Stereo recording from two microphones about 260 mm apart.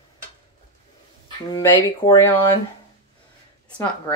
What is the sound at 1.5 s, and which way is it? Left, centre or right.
Speech, centre.